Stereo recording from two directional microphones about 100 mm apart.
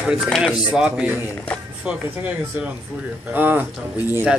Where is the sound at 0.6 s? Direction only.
10° right (ahead or behind).